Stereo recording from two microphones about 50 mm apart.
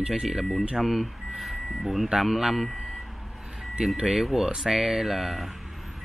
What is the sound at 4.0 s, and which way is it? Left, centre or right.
Speech, centre.